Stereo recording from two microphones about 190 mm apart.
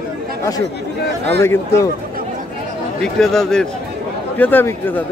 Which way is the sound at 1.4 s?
15° left (ahead or behind).